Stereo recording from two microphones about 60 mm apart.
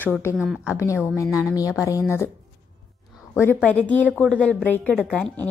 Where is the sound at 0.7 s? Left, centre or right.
Left.